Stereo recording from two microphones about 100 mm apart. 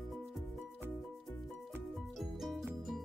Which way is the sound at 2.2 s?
Centre (ahead or behind).